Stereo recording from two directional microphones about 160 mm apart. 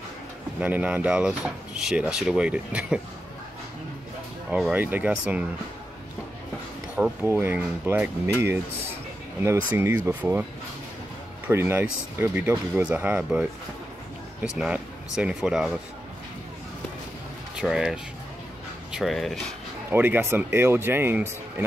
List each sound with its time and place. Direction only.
0.6 s speech: 10° right (ahead or behind)
4.5 s speech: 5° right (ahead or behind)
7.0 s speech: 15° right (ahead or behind)
9.7 s speech: 15° right (ahead or behind)
11.4 s speech: 15° right (ahead or behind)
14.5 s speech: 5° right (ahead or behind)
17.6 s speech: 5° right (ahead or behind)
19.9 s speech: 15° right (ahead or behind)